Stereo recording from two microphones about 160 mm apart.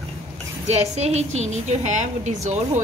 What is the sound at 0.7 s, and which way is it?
A woman's voice, 45° right (ahead or behind).